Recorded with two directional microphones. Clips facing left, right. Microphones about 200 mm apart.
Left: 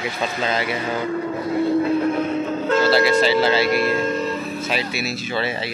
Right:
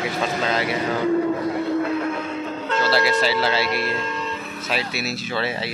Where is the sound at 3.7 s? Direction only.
50° left (ahead or behind).